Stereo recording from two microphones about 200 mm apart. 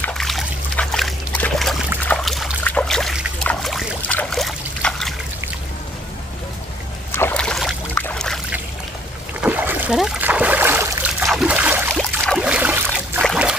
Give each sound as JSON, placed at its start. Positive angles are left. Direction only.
{"t": 0.0, "sound": "trickle", "side_deg": 0}
{"t": 2.0, "sound": "boat", "side_deg": 0}
{"t": 7.1, "sound": "boat", "side_deg": 10}
{"t": 9.4, "sound": "a sound", "side_deg": -10}
{"t": 11.2, "sound": "trickle", "side_deg": -5}
{"t": 11.9, "sound": "a sound", "side_deg": 5}
{"t": 13.2, "sound": "boat", "side_deg": 0}